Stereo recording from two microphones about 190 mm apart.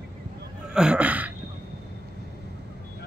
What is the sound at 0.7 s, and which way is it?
Speech, 5° right (ahead or behind).